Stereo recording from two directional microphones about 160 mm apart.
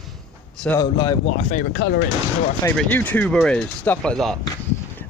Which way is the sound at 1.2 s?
45° left (ahead or behind).